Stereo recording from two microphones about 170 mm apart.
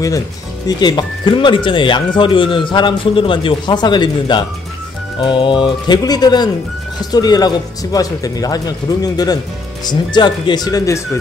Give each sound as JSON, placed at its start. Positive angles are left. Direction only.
{"t": 0.7, "sound": "speech", "side_deg": 25}